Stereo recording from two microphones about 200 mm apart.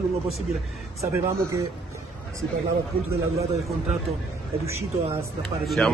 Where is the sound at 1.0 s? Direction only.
15° right (ahead or behind).